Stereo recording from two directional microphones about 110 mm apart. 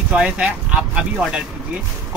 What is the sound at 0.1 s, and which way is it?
Speech, 10° right (ahead or behind).